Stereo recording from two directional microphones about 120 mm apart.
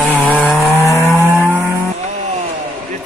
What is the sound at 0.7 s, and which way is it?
Vehicle, 20° left (ahead or behind).